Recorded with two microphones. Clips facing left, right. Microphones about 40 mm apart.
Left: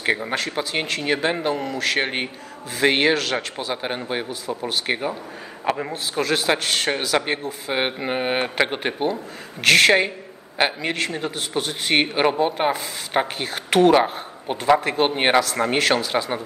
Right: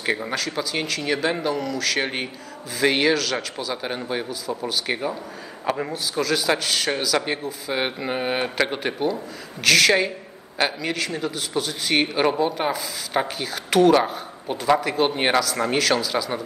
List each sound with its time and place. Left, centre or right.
0.3 s a man's voice: left
6.1 s a man's voice: left